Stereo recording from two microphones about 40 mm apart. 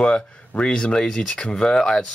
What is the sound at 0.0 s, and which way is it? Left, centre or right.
Speech, left.